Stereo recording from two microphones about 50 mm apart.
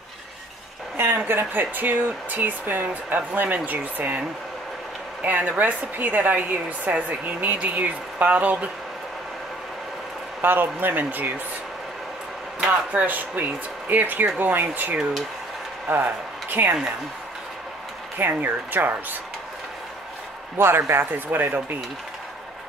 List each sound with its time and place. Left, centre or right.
0.9 s speech: right
1.4 s a woman's voice: right
5.2 s a woman's voice: right
10.4 s a woman's voice: right
12.9 s a woman's voice: right
18.1 s a woman's voice: right
20.5 s a man's voice: right
20.9 s a woman's voice: right